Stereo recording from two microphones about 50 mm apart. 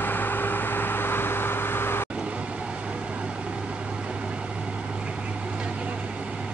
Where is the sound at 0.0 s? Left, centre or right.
Left.